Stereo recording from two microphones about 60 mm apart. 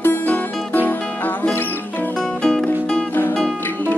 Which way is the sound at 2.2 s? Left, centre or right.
Centre.